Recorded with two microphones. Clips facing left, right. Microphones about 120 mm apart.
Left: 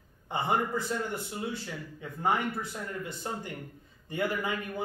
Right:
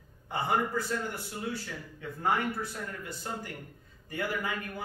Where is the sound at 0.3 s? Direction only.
20° left (ahead or behind).